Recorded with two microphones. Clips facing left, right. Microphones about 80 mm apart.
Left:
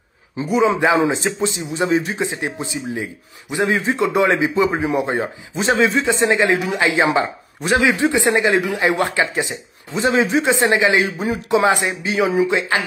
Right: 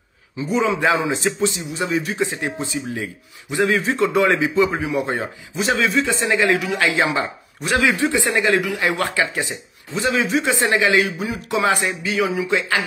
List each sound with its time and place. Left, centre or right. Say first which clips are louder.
0.7 s speech: left 4 dB; left